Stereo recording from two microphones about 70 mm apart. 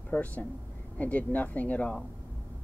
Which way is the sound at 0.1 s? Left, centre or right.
Left.